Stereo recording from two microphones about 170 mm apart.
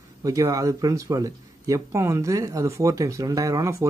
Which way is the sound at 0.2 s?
20° right (ahead or behind).